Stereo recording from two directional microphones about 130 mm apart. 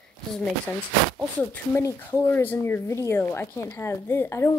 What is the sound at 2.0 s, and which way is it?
A woman's voice, 15° left (ahead or behind).